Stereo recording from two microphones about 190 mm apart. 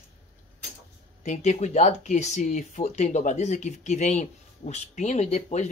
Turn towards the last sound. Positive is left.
turn(degrees=40)  # may be behind; listen again after turning